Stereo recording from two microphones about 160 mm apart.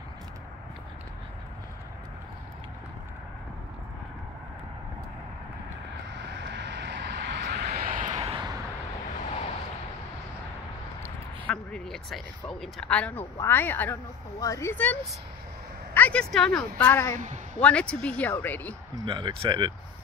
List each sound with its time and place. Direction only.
6.2 s vehicle: 90° right; by 8.5 s 40° right (ahead or behind)
11.4 s speech: 5° left (ahead or behind)
19.0 s speech: 30° right (ahead or behind)